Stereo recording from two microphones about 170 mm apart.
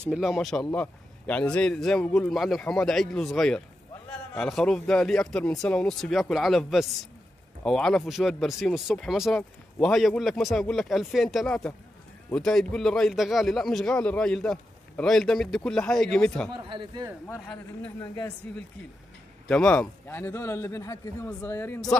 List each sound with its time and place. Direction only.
0.0 s a man's voice: 5° right (ahead or behind)
16.5 s speech: 30° right (ahead or behind)
19.4 s a man's voice: 5° left (ahead or behind)